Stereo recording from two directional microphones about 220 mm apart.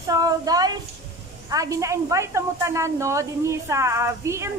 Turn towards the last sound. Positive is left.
turn(degrees=-10)  # may be behind; listen again after turning